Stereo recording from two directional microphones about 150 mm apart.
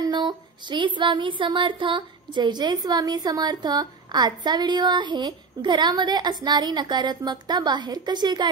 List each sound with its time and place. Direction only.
0.0 s speech: 30° right (ahead or behind)